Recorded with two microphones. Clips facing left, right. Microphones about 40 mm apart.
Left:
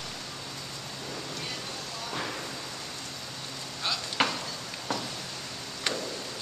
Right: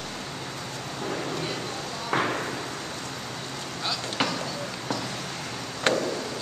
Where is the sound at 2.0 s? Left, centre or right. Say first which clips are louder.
Right 10 dB; right.